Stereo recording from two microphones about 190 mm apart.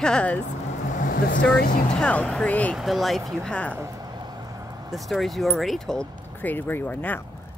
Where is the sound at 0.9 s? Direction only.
45° left (ahead or behind).